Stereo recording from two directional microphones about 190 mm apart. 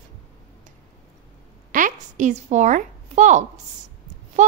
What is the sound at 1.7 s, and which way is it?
A woman's voice, 40° right (ahead or behind).